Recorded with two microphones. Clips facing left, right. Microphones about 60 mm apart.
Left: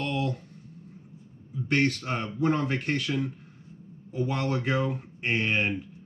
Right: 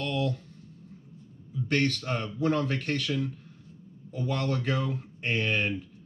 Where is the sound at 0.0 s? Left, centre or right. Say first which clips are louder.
Even; left.